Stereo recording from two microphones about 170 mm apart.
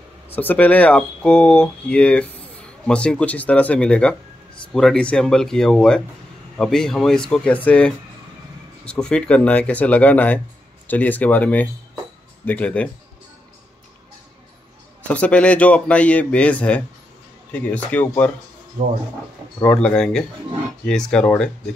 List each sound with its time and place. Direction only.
0.4 s speech: 10° left (ahead or behind)
15.0 s speech: 10° left (ahead or behind)
18.8 s speech: 45° right (ahead or behind)
19.6 s speech: 5° left (ahead or behind)